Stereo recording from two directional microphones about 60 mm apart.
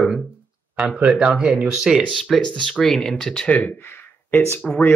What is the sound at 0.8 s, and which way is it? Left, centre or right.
Speech, right.